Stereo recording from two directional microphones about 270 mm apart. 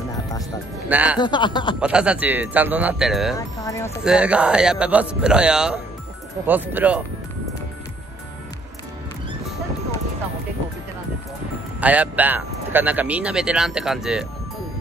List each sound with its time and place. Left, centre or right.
0.8 s speech: centre
1.1 s speech: centre
1.8 s speech: centre
3.3 s speech: centre
4.0 s speech: centre
11.8 s speech: centre